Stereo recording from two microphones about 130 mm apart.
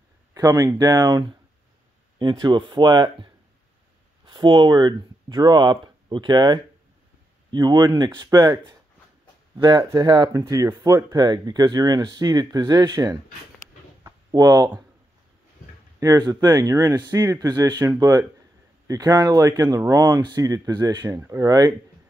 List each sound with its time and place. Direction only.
0.3 s speech: 25° right (ahead or behind)
4.3 s speech: 35° right (ahead or behind)
14.0 s a sound: 30° right (ahead or behind)
16.0 s speech: 30° right (ahead or behind)